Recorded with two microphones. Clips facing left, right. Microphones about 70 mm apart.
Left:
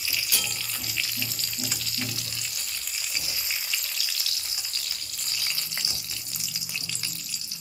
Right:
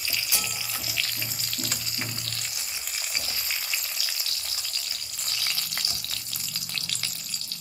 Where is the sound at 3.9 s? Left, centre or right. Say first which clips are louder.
Even; right.